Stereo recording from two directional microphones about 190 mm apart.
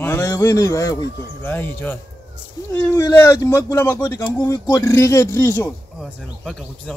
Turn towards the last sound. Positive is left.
turn(degrees=0)  # may be behind; listen again after turning